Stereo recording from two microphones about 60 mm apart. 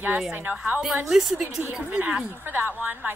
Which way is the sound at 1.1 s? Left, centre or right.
Centre.